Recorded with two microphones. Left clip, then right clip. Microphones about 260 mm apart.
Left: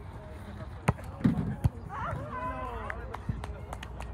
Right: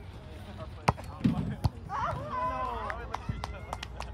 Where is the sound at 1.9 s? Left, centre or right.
Right.